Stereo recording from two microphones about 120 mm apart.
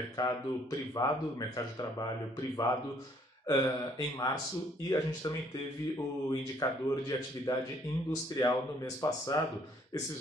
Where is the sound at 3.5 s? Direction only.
30° left (ahead or behind).